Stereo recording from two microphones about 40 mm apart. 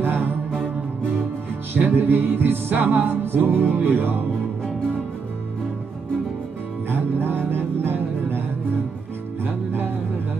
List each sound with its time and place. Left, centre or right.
0.0 s music: right
1.7 s music: right
6.9 s music: right
9.4 s music: right